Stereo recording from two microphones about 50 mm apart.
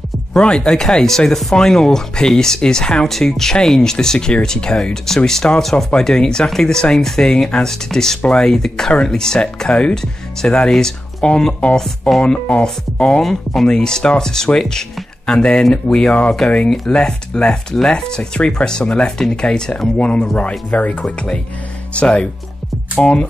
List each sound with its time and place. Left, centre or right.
0.4 s speech: centre
11.6 s speech: left
13.2 s speech: centre; by 22.3 s left